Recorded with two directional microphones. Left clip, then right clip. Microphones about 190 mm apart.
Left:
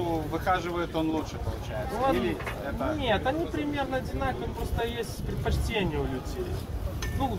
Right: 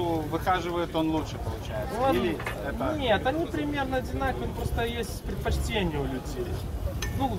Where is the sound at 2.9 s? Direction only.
20° right (ahead or behind).